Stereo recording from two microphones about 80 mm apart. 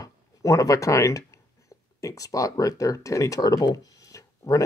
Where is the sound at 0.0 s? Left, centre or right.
Left.